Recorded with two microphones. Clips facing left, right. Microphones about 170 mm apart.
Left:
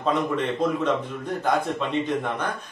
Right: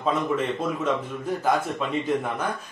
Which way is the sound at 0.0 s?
Centre (ahead or behind).